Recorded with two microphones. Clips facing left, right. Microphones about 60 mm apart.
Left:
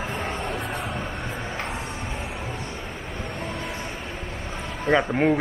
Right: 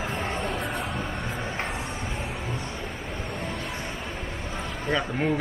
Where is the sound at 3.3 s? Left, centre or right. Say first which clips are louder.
Left 2 dB; centre.